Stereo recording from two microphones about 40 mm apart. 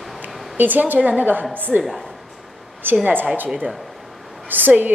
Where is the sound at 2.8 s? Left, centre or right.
Right.